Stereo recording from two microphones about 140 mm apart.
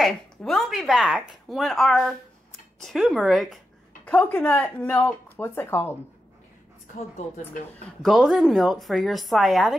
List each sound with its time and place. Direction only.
0.0 s speech: centre (ahead or behind)
4.0 s speech: 10° left (ahead or behind)
7.0 s a woman's voice: 55° left (ahead or behind)
8.0 s speech: centre (ahead or behind)